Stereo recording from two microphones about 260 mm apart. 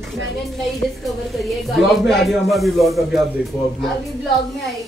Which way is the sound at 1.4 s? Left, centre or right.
Centre.